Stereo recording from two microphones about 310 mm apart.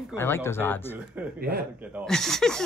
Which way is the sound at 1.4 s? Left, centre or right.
Right.